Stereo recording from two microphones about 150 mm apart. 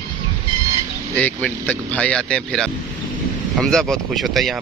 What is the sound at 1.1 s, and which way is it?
Speech, 10° left (ahead or behind).